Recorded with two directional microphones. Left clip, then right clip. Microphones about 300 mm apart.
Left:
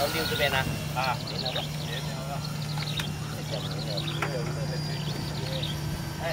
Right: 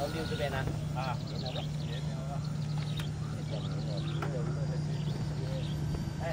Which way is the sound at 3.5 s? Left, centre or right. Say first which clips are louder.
Left 8 dB; centre.